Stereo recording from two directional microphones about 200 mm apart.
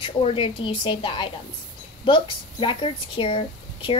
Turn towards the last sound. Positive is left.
turn(degrees=25)  # may be behind; listen again after turning